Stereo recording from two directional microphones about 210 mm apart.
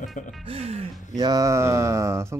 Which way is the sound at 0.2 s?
40° left (ahead or behind).